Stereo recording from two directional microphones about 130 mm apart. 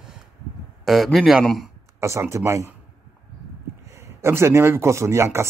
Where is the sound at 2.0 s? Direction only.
20° right (ahead or behind).